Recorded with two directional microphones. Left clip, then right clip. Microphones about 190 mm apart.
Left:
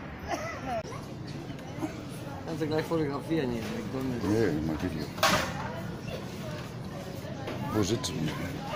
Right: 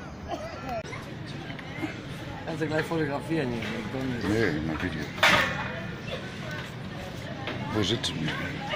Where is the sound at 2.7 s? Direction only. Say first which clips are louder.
Right 1 dB; 45° right (ahead or behind).